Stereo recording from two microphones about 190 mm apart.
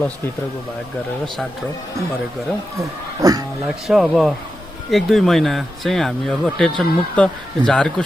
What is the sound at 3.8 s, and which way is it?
Speech, centre (ahead or behind).